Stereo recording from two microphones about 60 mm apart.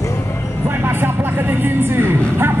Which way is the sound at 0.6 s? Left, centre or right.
Right.